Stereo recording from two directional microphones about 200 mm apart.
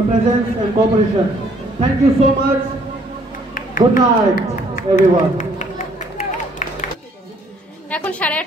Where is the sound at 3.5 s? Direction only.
40° left (ahead or behind).